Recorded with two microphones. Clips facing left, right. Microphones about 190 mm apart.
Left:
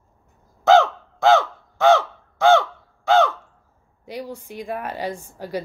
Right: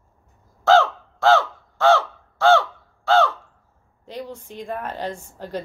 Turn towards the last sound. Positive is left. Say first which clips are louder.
# left 2 dB
turn(degrees=10)  # may be behind; listen again after turning